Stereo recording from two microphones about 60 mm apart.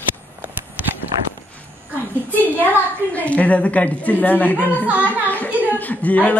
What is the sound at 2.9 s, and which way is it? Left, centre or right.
A woman's voice, left.